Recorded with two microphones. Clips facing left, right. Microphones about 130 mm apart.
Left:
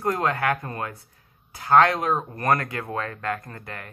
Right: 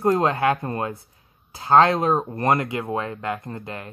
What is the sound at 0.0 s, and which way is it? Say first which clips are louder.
Speech: right 5 dB; 25° right (ahead or behind).